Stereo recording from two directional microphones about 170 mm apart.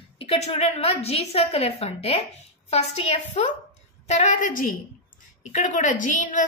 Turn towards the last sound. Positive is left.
turn(degrees=50)  # may be behind; listen again after turning